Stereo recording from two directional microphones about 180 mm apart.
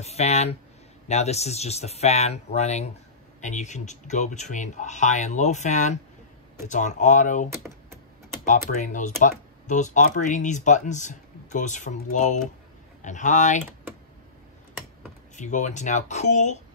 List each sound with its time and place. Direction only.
0.0 s speech: 35° left (ahead or behind)
8.5 s speech: 45° left (ahead or behind)
15.3 s speech: 40° left (ahead or behind)